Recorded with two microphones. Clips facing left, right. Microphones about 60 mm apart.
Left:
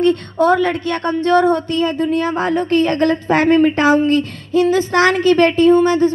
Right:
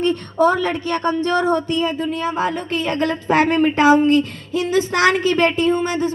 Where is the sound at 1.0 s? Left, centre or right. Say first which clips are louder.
Left 5 dB; centre.